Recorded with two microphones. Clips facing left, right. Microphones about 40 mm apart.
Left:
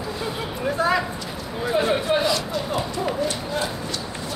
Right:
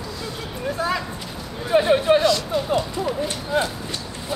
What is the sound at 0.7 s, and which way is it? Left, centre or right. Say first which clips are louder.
Speech: left 3 dB; centre.